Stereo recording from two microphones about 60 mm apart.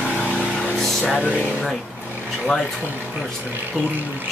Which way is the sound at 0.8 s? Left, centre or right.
Centre.